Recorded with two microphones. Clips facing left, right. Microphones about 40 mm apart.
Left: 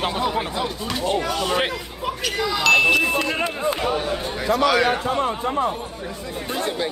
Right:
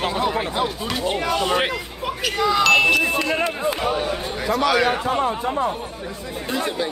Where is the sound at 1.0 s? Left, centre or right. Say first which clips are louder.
Even; right.